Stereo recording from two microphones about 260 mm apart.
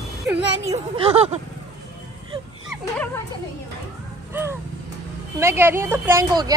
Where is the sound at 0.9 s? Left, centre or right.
Right.